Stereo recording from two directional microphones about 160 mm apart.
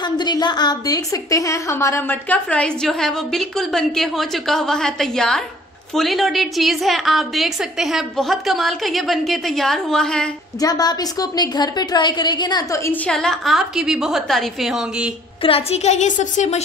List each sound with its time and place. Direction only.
0.0 s a woman's voice: 25° left (ahead or behind); by 10.3 s 5° left (ahead or behind)
10.6 s a woman's voice: 25° left (ahead or behind); by 15.1 s 5° right (ahead or behind)
15.4 s a woman's voice: 40° left (ahead or behind)